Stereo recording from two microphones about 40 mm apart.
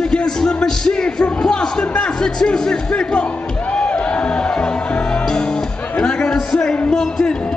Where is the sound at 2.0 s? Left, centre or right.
Centre.